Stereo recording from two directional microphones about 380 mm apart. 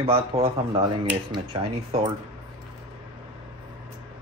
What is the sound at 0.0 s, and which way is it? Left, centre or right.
Speech, centre.